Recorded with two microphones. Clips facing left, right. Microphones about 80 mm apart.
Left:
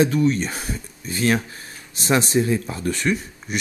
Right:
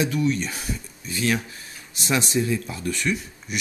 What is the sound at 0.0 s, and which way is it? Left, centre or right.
Speech, left.